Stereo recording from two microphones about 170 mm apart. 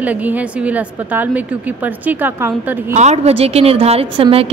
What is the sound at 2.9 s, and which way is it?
A woman's voice, 40° right (ahead or behind).